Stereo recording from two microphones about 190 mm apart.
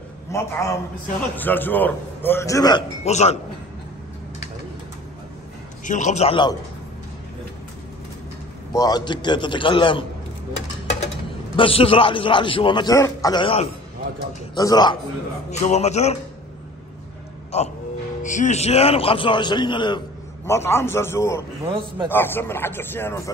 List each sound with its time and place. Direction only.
0.3 s a man's voice: 15° left (ahead or behind)
3.1 s a man's voice: 35° left (ahead or behind)
5.9 s a man's voice: 40° left (ahead or behind)
8.7 s a man's voice: 20° left (ahead or behind)
11.5 s a man's voice: 30° left (ahead or behind)
15.5 s a man's voice: 35° left (ahead or behind)
17.5 s a man's voice: 35° left (ahead or behind)
20.4 s a man's voice: 15° left (ahead or behind)
21.6 s a man's voice: 25° right (ahead or behind)
22.1 s a man's voice: 10° left (ahead or behind)